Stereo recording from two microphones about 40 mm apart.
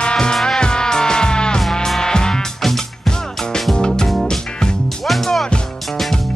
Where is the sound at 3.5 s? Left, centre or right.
Centre.